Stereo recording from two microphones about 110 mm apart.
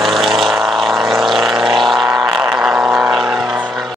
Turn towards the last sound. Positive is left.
turn(degrees=-5)  # may be behind; listen again after turning